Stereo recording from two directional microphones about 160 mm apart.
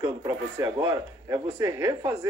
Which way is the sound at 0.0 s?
25° right (ahead or behind).